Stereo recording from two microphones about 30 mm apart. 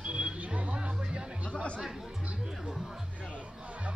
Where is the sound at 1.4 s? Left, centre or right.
Left.